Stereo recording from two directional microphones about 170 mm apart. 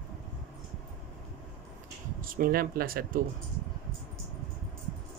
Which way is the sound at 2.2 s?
55° right (ahead or behind).